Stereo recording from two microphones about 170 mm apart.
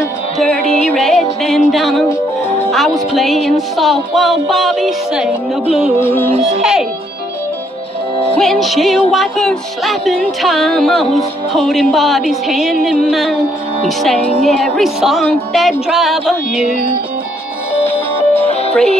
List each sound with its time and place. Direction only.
0.9 s music: centre (ahead or behind)
2.0 s music: 15° left (ahead or behind)
2.7 s music: centre (ahead or behind)
5.9 s music: 10° left (ahead or behind)
6.4 s music: centre (ahead or behind)
8.4 s music: centre (ahead or behind)
18.3 s music: 35° left (ahead or behind)